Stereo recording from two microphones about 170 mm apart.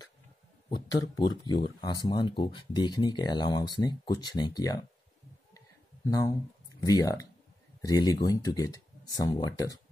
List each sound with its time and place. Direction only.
0.7 s speech: 25° left (ahead or behind)
6.0 s speech: 20° left (ahead or behind)